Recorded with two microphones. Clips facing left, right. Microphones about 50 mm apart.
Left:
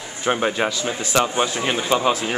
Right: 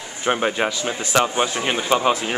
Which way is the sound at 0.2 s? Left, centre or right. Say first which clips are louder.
Even; centre.